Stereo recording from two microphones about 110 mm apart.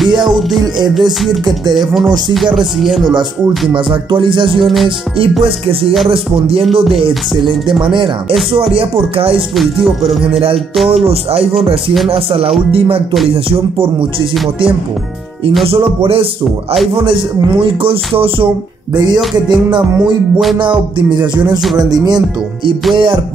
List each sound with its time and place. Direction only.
0.0 s music: centre (ahead or behind)
3.7 s music: 50° right (ahead or behind)
6.0 s speech: 60° right (ahead or behind)
7.6 s music: 45° right (ahead or behind)
8.5 s speech: 60° right (ahead or behind)
12.1 s speech: 60° right (ahead or behind)
15.6 s speech: 60° right (ahead or behind)
16.9 s music: 50° right (ahead or behind)
18.9 s music: 40° right (ahead or behind)